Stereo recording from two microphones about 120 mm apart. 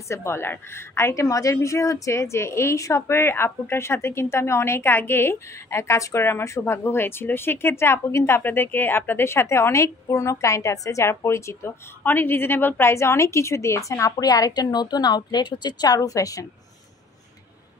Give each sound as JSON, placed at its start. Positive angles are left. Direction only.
{"t": 0.1, "sound": "a woman's voice", "side_deg": 20}